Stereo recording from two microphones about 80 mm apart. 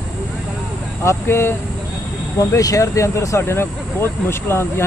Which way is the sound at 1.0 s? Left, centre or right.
Left.